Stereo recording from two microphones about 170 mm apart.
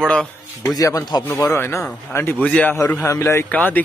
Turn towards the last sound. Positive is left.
turn(degrees=10)  # may be behind; listen again after turning